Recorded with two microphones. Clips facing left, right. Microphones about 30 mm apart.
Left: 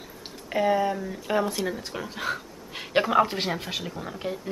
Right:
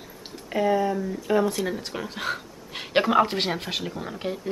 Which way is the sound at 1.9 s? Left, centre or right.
Centre.